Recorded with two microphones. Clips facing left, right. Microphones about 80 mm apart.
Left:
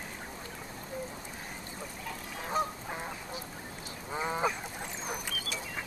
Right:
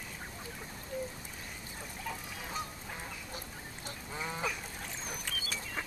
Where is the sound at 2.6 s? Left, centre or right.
Left.